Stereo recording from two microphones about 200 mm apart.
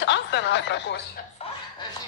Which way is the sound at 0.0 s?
60° left (ahead or behind).